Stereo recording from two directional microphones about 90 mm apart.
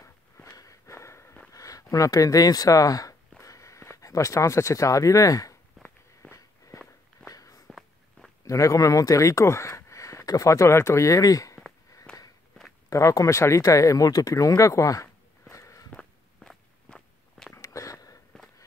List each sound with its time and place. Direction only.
0.0 s walk: 40° left (ahead or behind)
1.5 s a sound: 40° left (ahead or behind)
6.3 s walk: 40° left (ahead or behind)
7.6 s walk: 5° left (ahead or behind)
8.5 s speech: 35° left (ahead or behind)
12.1 s walk: 10° left (ahead or behind)
12.9 s speech: 35° left (ahead or behind)
15.5 s walk: 35° left (ahead or behind)
16.9 s walk: 10° left (ahead or behind)
17.6 s a sound: 40° left (ahead or behind)